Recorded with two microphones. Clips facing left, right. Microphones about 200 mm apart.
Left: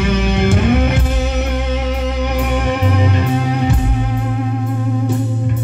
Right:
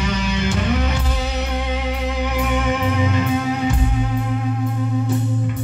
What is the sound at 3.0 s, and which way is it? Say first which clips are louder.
Music: left 2 dB; 40° left (ahead or behind).